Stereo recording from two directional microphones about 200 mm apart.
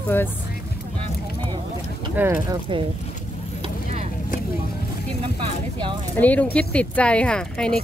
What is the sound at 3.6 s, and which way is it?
Vehicle, 30° right (ahead or behind).